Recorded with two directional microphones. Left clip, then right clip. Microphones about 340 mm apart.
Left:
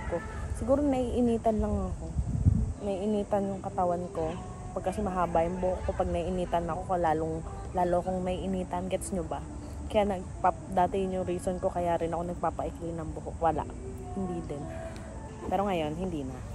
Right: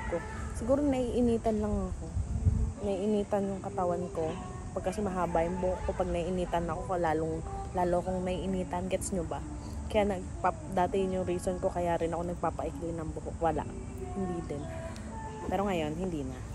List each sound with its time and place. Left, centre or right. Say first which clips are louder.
0.7 s a woman's voice: left 2 dB; centre
2.9 s a woman's voice: left 1 dB; centre
15.5 s speech: left 3 dB; centre